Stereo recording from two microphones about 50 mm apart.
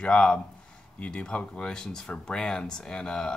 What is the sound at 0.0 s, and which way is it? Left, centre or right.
Speech, centre.